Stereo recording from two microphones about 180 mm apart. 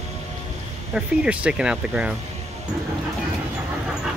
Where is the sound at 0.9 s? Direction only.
5° right (ahead or behind).